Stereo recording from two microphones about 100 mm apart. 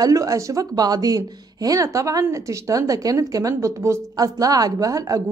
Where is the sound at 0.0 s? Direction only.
35° right (ahead or behind).